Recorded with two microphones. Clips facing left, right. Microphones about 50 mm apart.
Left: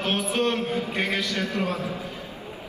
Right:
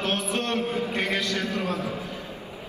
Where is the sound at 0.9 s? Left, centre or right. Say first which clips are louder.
Even; left.